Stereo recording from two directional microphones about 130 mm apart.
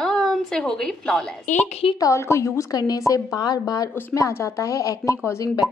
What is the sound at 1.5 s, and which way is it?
Speech, 65° left (ahead or behind).